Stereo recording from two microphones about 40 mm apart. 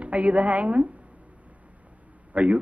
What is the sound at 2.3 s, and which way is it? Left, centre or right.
Speech, right.